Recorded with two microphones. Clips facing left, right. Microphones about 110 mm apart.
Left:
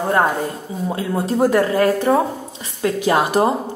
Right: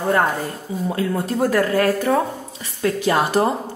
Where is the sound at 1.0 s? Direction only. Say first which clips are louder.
Left 3 dB; 25° left (ahead or behind).